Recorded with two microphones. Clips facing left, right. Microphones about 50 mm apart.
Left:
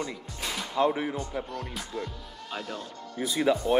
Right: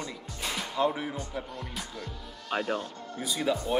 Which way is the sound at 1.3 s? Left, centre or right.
Centre.